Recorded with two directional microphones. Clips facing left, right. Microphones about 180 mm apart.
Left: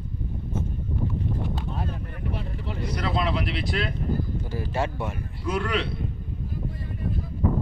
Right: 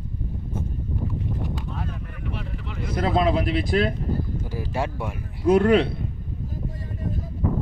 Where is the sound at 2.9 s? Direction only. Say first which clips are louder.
Right 6 dB; 50° right (ahead or behind).